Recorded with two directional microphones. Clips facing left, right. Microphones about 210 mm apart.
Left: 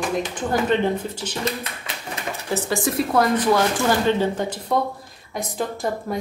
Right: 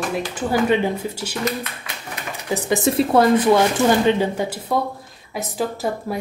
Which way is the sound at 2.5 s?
15° right (ahead or behind).